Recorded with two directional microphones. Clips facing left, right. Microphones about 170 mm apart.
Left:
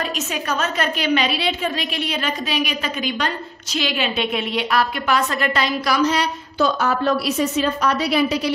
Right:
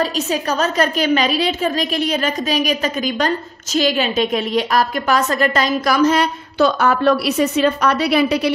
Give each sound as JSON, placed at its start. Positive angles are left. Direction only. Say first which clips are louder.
{"t": 0.0, "sound": "a woman's voice", "louder": "right 6 dB", "side_deg": -35}
{"t": 6.6, "sound": "a woman's voice", "louder": "right 4 dB", "side_deg": -65}